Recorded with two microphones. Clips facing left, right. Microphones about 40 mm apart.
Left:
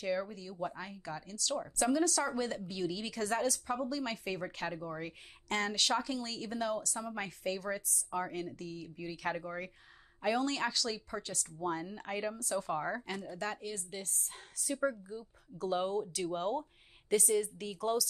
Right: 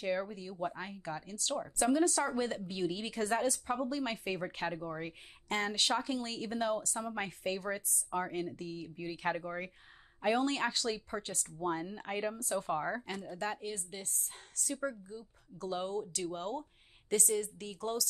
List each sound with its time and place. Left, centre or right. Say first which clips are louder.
0.0 s speech: even; right
13.8 s a woman's voice: left 1 dB; centre